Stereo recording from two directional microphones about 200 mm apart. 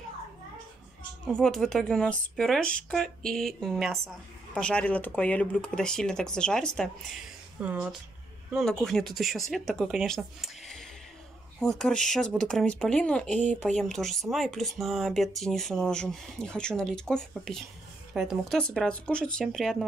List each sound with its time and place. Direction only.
1.3 s speech: centre (ahead or behind)